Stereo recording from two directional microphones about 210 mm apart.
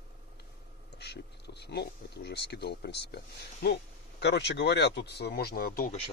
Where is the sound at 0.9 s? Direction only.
50° left (ahead or behind).